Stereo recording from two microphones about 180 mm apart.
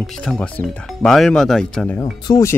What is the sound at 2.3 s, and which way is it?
Speech, 15° left (ahead or behind).